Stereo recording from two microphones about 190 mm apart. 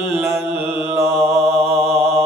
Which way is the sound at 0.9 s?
Centre (ahead or behind).